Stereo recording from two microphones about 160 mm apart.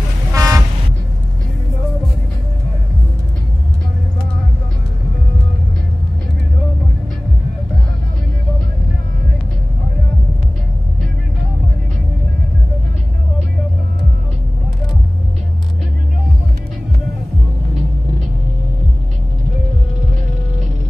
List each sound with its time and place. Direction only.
0.3 s vehicle: 20° right (ahead or behind)